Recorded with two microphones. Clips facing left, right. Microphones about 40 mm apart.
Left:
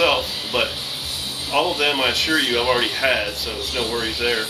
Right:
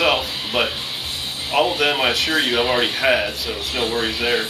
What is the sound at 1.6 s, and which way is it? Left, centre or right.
Speech, centre.